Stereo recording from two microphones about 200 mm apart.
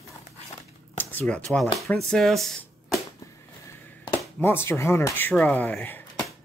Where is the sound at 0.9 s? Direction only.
5° left (ahead or behind).